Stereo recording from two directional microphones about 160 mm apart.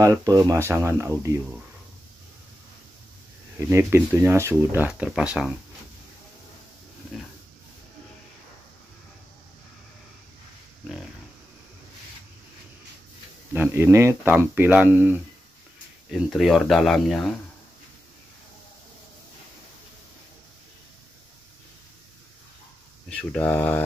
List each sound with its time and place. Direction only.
0.0 s speech: 20° right (ahead or behind)
3.5 s speech: 15° right (ahead or behind)
13.5 s speech: 15° right (ahead or behind); by 17.4 s 5° left (ahead or behind)
23.0 s speech: 10° left (ahead or behind)